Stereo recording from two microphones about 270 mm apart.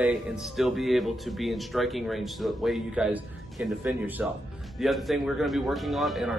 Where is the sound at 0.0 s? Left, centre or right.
Centre.